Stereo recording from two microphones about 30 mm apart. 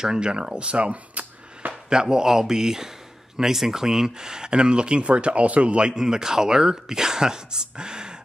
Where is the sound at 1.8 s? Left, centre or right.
Right.